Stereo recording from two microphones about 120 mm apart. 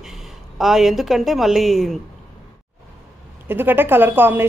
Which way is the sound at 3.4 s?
15° right (ahead or behind).